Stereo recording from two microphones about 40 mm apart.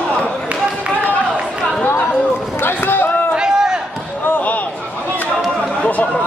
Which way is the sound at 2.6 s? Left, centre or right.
Left.